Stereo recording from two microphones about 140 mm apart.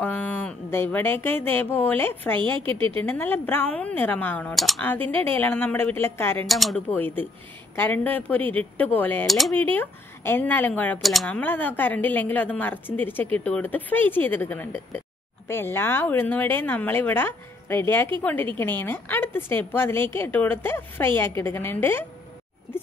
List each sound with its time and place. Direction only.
0.0 s a woman's voice: 10° left (ahead or behind)
4.8 s a woman's voice: 15° left (ahead or behind)
6.4 s speech: centre (ahead or behind)
6.9 s a woman's voice: 15° left (ahead or behind)
11.0 s speech: centre (ahead or behind)
11.2 s a woman's voice: 15° left (ahead or behind)